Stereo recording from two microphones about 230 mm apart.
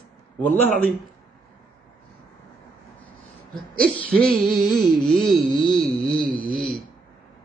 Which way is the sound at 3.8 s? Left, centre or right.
Centre.